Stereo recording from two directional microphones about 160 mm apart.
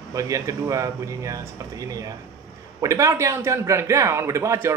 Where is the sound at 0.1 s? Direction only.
20° right (ahead or behind).